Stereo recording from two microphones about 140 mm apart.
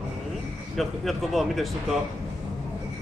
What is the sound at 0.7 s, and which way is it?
Speech, centre (ahead or behind).